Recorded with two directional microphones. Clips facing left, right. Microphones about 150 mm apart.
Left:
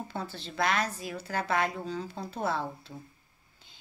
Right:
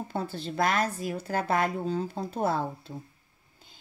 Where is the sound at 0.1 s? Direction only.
50° right (ahead or behind).